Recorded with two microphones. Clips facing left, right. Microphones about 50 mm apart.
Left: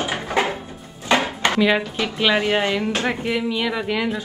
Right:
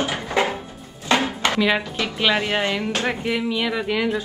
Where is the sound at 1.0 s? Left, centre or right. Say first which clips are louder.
Left 1 dB; left.